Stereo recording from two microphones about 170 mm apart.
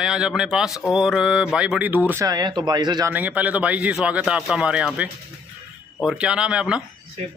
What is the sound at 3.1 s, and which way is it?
Speech, 10° right (ahead or behind).